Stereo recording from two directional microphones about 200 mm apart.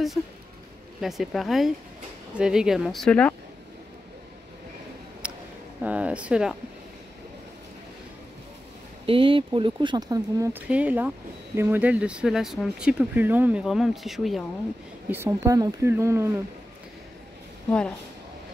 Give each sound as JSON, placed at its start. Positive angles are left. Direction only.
{"t": 1.0, "sound": "speech", "side_deg": 0}
{"t": 5.2, "sound": "a sound", "side_deg": -5}
{"t": 5.8, "sound": "speech", "side_deg": -5}
{"t": 9.0, "sound": "speech", "side_deg": -25}
{"t": 15.0, "sound": "speech", "side_deg": -10}
{"t": 17.6, "sound": "speech", "side_deg": 5}